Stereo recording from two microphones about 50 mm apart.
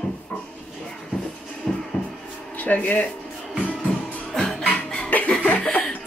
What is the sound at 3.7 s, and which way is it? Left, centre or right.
Music, left.